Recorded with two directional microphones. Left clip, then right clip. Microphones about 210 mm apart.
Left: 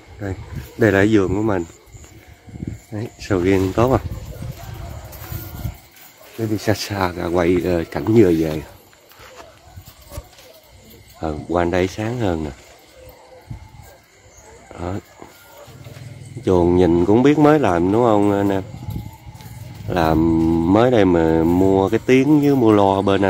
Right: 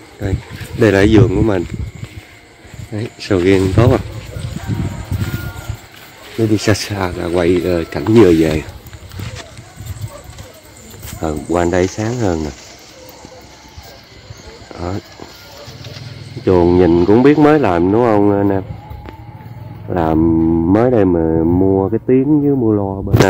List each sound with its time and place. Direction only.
0.2 s speech: 5° left (ahead or behind)
2.9 s speech: 5° left (ahead or behind)
6.9 s speech: 15° left (ahead or behind)
8.0 s speech: centre (ahead or behind)
11.1 s speech: centre (ahead or behind)
14.7 s horse: 10° left (ahead or behind)
16.4 s speech: 10° left (ahead or behind)
19.9 s speech: 20° left (ahead or behind)